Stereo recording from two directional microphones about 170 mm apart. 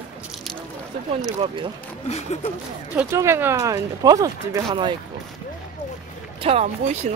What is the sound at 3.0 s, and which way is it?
Speech, 15° right (ahead or behind).